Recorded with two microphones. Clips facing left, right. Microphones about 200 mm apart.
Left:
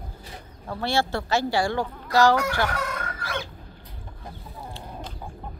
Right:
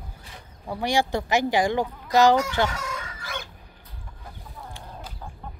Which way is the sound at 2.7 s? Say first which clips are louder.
Left 4 dB; 60° left (ahead or behind).